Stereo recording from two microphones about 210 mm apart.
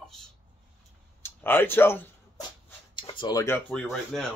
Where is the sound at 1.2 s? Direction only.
10° left (ahead or behind).